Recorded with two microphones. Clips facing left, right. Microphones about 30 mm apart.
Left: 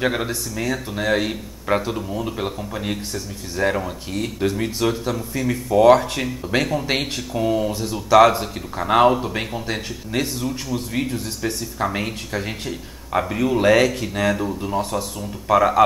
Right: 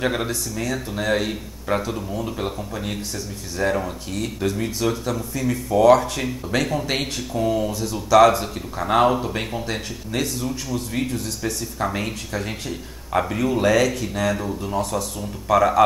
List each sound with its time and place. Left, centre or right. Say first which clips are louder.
0.0 s speech: left 1 dB; centre
10.1 s speech: left 1 dB; left
10.7 s speech: left 1 dB; centre
13.7 s speech: left 3 dB; left
14.3 s speech: left 2 dB; centre